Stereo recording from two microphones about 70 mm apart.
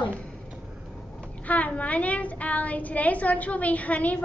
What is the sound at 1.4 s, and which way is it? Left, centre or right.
A child's voice, left.